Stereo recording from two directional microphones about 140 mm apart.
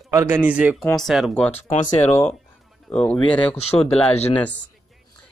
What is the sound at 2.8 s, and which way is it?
Speech, 5° left (ahead or behind).